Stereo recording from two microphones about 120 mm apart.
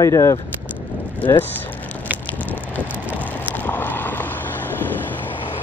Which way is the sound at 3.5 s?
15° left (ahead or behind).